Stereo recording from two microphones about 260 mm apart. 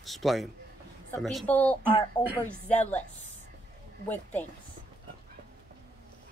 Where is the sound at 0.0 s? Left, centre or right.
Centre.